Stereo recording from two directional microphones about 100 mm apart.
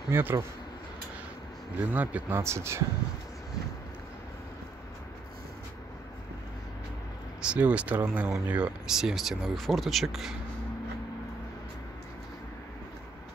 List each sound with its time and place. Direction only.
0.1 s speech: 25° right (ahead or behind)
1.9 s speech: 15° right (ahead or behind)
2.3 s speech: 25° right (ahead or behind)
7.4 s speech: 15° right (ahead or behind)